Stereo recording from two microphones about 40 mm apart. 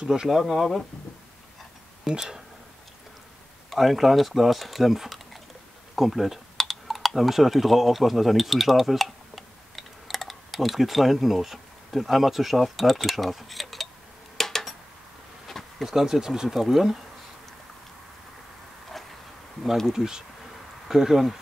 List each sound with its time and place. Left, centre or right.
0.0 s speech: centre
0.3 s speech: centre
2.0 s speech: centre
3.7 s speech: centre
14.3 s a sound: centre
15.8 s speech: centre
19.9 s speech: centre